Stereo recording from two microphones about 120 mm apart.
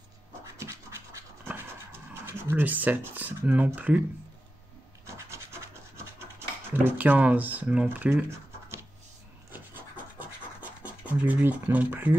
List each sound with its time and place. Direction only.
0.6 s scratch: 25° right (ahead or behind)
5.0 s scratch: 25° right (ahead or behind)
7.0 s speech: 15° right (ahead or behind)
10.1 s scratch: 15° right (ahead or behind)